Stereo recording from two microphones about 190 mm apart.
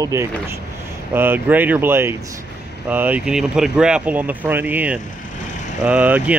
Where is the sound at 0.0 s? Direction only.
15° right (ahead or behind).